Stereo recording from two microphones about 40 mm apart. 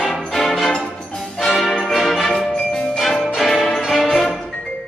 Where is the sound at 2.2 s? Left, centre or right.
Centre.